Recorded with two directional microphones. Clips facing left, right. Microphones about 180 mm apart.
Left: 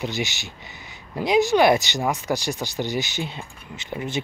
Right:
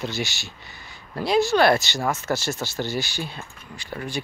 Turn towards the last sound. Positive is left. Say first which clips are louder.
# left 2 dB
turn(degrees=20)  # may be behind; listen again after turning